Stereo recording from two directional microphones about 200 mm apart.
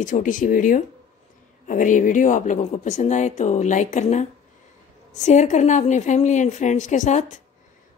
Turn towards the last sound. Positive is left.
turn(degrees=35)  # may be behind; listen again after turning